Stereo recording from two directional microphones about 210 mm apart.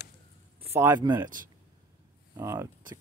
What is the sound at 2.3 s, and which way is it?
Speech, 15° right (ahead or behind).